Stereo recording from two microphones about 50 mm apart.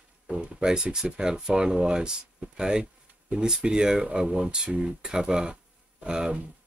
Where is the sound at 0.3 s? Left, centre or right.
Right.